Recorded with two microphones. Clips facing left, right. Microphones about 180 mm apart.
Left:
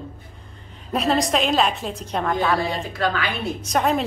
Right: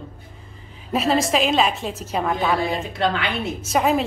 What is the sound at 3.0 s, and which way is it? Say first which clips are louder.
Speech: right 1 dB; 25° right (ahead or behind).